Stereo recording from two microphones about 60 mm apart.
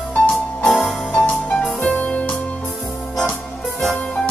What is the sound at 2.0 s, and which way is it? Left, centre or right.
Music, left.